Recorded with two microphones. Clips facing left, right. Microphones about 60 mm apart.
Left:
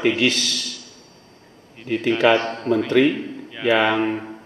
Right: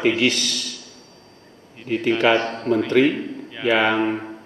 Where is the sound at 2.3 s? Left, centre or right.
Right.